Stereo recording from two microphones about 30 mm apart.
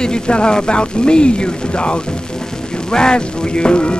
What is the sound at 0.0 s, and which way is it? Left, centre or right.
Speech, left.